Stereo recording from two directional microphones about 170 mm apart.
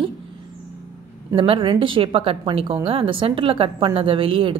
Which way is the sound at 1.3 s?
30° right (ahead or behind).